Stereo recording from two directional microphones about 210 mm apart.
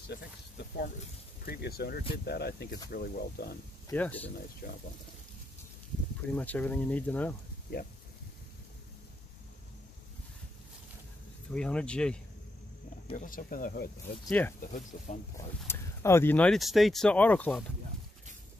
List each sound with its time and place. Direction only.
1.4 s speech: 50° left (ahead or behind)
3.9 s speech: 10° left (ahead or behind)
4.6 s speech: 40° left (ahead or behind)
6.3 s speech: 5° left (ahead or behind)
7.7 s speech: 45° left (ahead or behind)
11.5 s speech: 5° left (ahead or behind)
13.1 s speech: 40° left (ahead or behind)
15.6 s speech: 10° left (ahead or behind)